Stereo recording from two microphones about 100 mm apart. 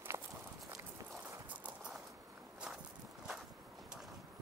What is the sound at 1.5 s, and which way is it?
Clip-clop, 15° right (ahead or behind).